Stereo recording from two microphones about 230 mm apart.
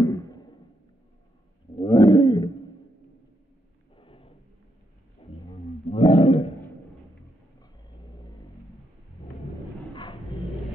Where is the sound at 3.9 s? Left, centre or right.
Left.